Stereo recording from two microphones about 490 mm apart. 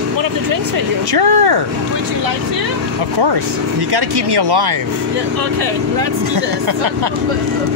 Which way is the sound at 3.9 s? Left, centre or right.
Right.